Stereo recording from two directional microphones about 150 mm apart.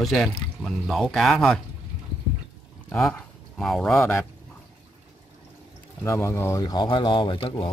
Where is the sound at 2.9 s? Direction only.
Centre (ahead or behind).